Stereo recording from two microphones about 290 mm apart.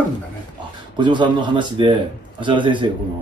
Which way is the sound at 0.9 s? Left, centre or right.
Centre.